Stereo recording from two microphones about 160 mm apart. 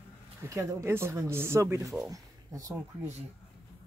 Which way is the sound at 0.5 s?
20° right (ahead or behind).